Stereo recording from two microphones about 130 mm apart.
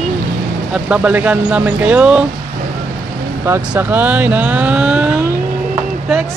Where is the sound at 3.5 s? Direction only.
15° right (ahead or behind).